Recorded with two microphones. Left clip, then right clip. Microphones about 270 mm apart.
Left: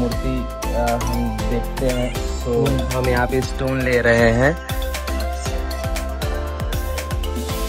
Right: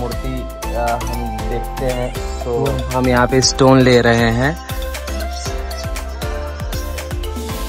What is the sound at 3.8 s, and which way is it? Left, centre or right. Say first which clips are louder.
Speech: right 3 dB; centre.